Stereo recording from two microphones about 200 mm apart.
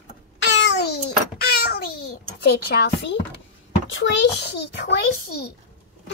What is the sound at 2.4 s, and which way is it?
Speech, 50° left (ahead or behind).